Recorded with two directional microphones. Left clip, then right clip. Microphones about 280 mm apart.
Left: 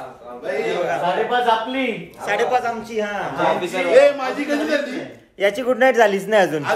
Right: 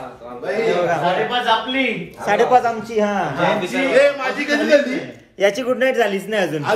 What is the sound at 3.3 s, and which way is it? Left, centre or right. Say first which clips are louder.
Speech: right 1 dB; left.